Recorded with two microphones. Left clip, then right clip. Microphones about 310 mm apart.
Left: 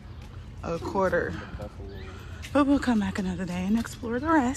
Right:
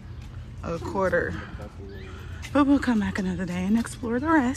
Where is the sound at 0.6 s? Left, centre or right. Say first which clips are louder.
Even; centre.